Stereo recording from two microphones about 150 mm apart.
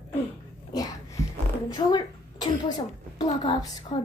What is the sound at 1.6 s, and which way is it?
Throat clearing, 25° left (ahead or behind).